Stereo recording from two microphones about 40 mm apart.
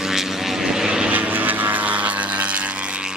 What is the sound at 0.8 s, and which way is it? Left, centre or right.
Vehicle, right.